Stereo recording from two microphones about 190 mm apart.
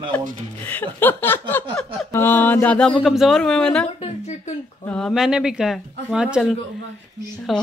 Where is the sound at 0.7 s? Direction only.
10° left (ahead or behind).